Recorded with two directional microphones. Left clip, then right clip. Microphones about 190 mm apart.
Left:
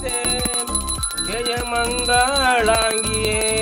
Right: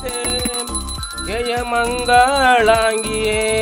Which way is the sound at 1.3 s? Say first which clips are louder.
Right 4 dB; 45° right (ahead or behind).